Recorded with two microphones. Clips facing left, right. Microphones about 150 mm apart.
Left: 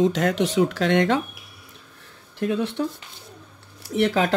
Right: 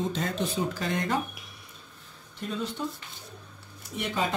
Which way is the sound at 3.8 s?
75° left (ahead or behind).